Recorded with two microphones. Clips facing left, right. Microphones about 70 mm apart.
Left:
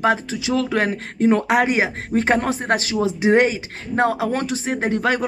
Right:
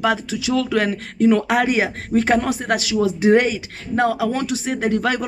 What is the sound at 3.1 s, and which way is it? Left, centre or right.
Speech, left.